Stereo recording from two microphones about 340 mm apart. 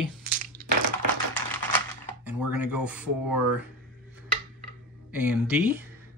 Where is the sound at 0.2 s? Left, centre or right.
Right.